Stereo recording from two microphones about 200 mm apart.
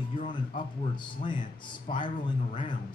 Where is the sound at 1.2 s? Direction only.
25° left (ahead or behind).